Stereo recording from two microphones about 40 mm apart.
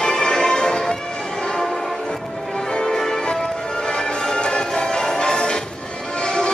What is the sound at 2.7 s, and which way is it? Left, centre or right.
Music, centre.